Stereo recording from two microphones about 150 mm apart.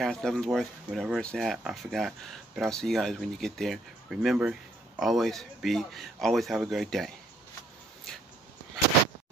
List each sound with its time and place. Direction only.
0.0 s speech: 5° left (ahead or behind)